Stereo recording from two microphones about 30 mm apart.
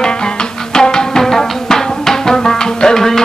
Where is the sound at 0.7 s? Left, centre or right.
Left.